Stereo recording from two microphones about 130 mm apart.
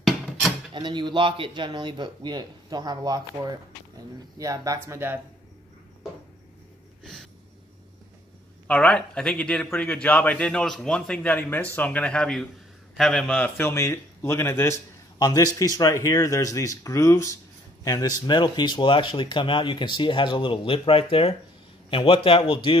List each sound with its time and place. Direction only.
0.7 s a man's voice: 35° right (ahead or behind); by 5.2 s 20° right (ahead or behind)
7.0 s a sound: 5° left (ahead or behind)
8.6 s a man's voice: 10° left (ahead or behind)
13.6 s speech: 20° left (ahead or behind)
15.1 s speech: 30° left (ahead or behind)